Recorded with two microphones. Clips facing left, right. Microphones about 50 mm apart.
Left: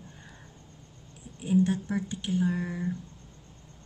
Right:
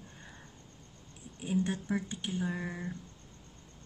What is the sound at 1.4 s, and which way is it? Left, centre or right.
Speech, right.